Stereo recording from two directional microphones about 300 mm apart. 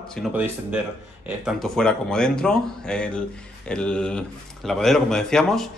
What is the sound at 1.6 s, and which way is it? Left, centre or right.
A man's voice, centre.